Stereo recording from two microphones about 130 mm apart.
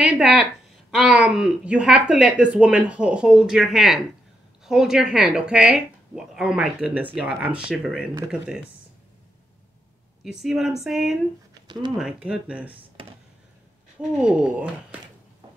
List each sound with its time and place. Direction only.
0.0 s speech: 5° right (ahead or behind)
10.2 s speech: 5° right (ahead or behind)
11.6 s typing: 35° right (ahead or behind)
12.0 s speech: 5° right (ahead or behind)
14.1 s speech: 10° right (ahead or behind)